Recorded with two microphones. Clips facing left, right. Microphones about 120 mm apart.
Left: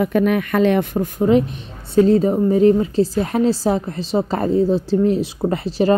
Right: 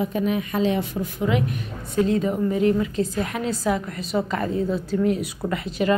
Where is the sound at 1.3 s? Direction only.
30° left (ahead or behind).